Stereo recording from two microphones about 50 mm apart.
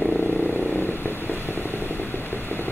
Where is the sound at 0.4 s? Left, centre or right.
Left.